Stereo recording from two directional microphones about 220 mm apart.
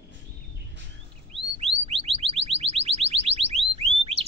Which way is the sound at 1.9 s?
25° right (ahead or behind).